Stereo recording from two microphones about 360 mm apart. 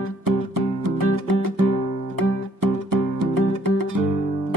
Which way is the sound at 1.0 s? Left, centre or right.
Right.